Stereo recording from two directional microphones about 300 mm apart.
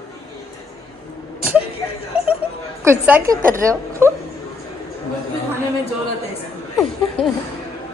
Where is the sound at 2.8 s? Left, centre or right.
Centre.